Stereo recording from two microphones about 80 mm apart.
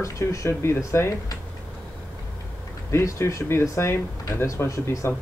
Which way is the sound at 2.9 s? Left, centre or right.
Left.